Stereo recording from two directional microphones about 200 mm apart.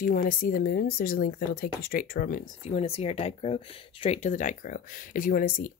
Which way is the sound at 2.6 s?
30° left (ahead or behind).